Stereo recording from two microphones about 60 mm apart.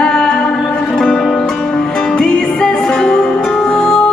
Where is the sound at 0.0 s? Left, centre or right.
Centre.